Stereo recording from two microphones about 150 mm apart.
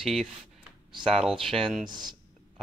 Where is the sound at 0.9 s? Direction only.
35° right (ahead or behind).